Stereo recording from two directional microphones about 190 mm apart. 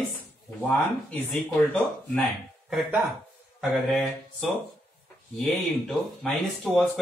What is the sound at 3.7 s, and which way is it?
Speech, centre (ahead or behind).